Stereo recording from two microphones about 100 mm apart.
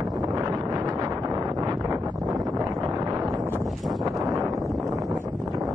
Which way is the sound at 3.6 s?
Centre (ahead or behind).